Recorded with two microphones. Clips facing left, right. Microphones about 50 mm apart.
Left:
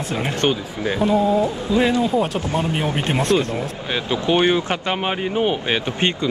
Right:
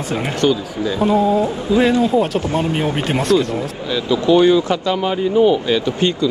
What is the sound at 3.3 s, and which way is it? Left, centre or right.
Speech, left.